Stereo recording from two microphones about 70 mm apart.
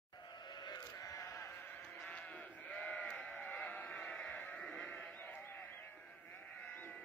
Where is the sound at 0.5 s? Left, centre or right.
Left.